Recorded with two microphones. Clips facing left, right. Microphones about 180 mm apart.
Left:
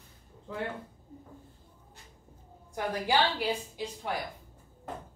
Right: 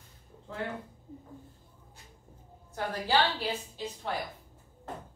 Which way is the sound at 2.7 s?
15° left (ahead or behind).